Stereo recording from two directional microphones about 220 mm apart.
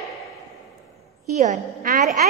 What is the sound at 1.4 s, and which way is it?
Speech, 35° right (ahead or behind).